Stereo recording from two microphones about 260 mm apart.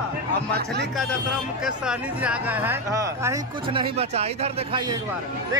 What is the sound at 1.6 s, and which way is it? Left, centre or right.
Speech, centre.